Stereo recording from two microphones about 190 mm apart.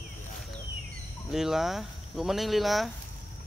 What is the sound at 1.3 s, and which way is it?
Speech, centre (ahead or behind).